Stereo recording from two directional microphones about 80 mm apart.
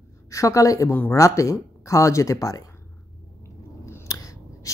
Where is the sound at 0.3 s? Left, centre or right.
Left.